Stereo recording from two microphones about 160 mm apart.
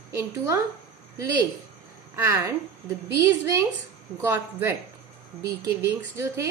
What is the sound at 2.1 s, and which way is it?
Speech, 15° right (ahead or behind).